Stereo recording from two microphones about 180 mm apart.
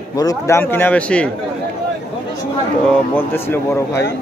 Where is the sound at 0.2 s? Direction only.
20° left (ahead or behind).